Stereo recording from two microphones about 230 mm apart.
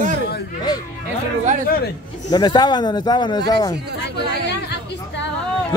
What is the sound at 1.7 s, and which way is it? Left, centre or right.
Speech, left.